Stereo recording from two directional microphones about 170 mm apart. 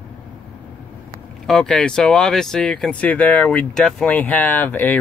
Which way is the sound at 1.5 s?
5° left (ahead or behind).